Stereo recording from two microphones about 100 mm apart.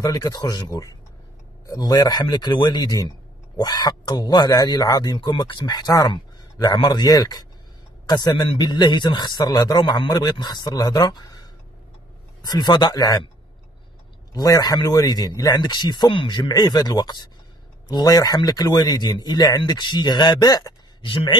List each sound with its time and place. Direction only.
0.0 s speech: 40° left (ahead or behind)
14.3 s speech: 40° left (ahead or behind)
21.0 s speech: 55° left (ahead or behind)